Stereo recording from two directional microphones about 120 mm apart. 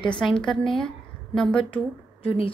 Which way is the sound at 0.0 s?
40° left (ahead or behind).